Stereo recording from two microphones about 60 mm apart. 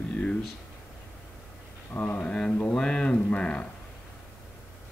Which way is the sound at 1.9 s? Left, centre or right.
Left.